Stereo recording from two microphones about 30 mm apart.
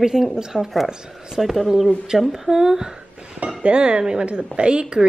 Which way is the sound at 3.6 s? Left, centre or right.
Right.